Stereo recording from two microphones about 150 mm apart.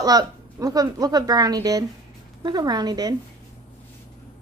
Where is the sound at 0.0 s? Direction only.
25° right (ahead or behind).